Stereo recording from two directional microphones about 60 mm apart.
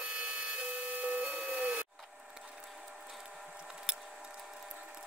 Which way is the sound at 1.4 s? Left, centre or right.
Right.